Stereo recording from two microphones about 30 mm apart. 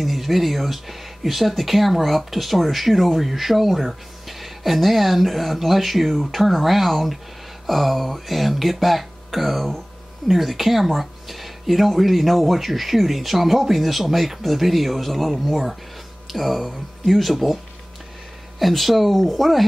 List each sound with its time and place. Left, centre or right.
0.0 s speech: centre
18.6 s speech: centre